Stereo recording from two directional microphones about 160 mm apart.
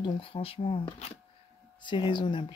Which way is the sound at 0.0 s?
35° left (ahead or behind).